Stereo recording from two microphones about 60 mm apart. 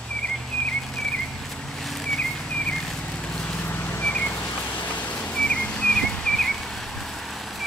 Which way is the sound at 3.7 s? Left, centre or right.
Left.